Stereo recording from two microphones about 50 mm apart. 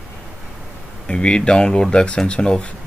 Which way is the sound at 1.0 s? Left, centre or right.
Centre.